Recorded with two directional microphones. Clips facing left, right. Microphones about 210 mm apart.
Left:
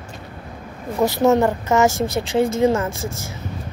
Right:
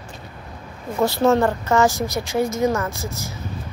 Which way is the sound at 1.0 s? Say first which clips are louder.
Left 1 dB; 20° left (ahead or behind).